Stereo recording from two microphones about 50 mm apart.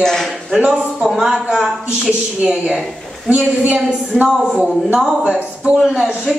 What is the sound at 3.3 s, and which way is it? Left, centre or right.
Speech, right.